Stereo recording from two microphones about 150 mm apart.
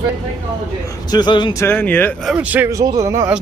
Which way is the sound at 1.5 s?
15° left (ahead or behind).